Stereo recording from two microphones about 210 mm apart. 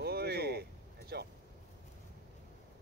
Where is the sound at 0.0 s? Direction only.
50° right (ahead or behind).